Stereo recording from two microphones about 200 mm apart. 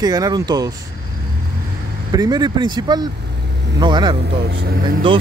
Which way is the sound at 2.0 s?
20° right (ahead or behind).